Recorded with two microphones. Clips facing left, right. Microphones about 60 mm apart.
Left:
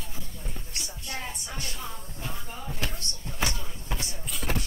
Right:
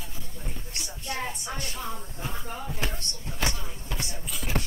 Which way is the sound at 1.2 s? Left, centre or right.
Right.